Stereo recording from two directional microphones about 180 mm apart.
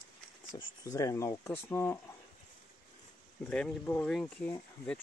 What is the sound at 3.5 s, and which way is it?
Speech, 5° left (ahead or behind).